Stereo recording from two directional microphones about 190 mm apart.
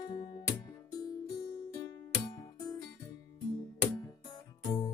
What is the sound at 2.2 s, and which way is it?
Music, 20° left (ahead or behind).